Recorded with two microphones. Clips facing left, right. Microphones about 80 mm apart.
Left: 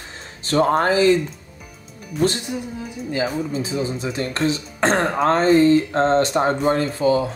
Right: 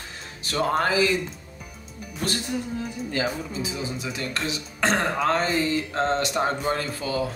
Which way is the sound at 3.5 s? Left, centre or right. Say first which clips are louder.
Left 6 dB; left.